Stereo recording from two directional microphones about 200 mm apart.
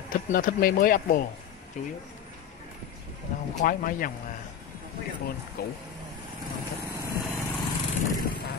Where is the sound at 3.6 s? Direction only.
45° left (ahead or behind).